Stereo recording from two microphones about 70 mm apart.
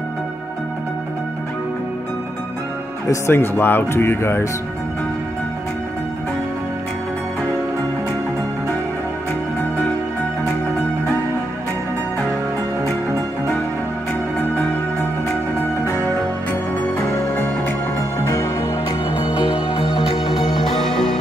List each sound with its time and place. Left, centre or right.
3.3 s speech: left
18.2 s music: left
18.9 s music: left
20.0 s music: centre